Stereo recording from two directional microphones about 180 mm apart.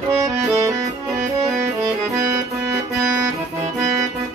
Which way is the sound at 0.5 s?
15° right (ahead or behind).